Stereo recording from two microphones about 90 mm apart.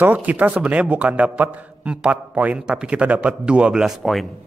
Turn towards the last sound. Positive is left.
turn(degrees=-5)  # may be behind; listen again after turning